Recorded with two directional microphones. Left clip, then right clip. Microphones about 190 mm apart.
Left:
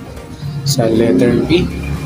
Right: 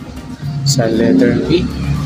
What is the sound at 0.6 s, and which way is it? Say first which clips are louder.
Speech: left 1 dB; centre (ahead or behind).